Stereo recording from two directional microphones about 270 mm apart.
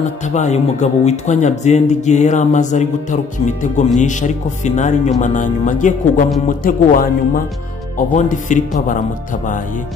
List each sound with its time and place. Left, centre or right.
0.3 s speech: left